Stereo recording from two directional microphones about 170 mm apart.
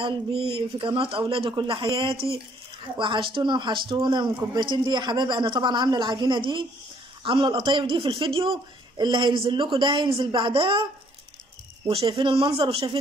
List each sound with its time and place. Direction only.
0.0 s speech: 35° right (ahead or behind)
3.0 s speech: 30° right (ahead or behind)
11.9 s speech: 30° right (ahead or behind)